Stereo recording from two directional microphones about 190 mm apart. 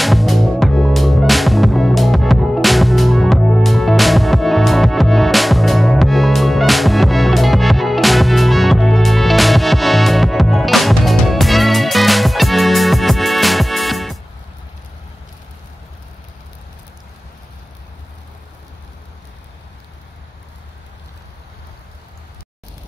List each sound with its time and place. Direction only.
0.0 s music: centre (ahead or behind)